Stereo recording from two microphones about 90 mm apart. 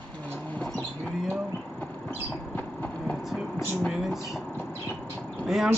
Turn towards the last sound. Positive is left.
turn(degrees=-5)  # may be behind; listen again after turning